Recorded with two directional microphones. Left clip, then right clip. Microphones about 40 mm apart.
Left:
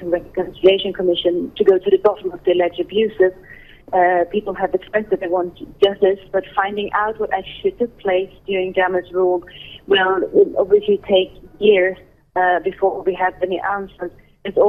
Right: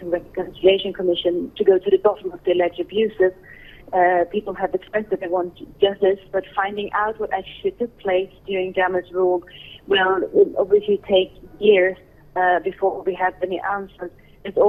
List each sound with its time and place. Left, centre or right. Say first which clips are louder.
0.0 s a woman's voice: left 4 dB; right